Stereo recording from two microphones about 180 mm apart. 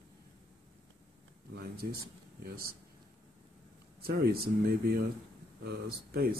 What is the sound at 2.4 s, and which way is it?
Speech, 55° right (ahead or behind).